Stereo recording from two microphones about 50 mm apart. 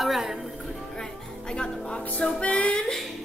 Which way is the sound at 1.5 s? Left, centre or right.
Centre.